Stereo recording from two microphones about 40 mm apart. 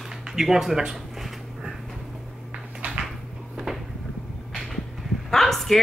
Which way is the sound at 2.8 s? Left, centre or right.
Right.